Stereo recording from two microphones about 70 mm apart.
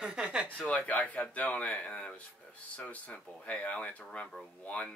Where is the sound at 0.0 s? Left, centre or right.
Centre.